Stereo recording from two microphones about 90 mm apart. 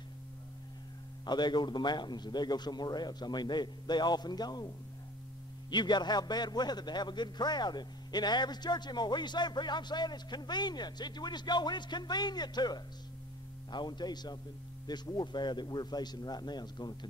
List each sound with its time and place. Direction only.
1.2 s a man's voice: 55° left (ahead or behind)
5.7 s a man's voice: 55° left (ahead or behind)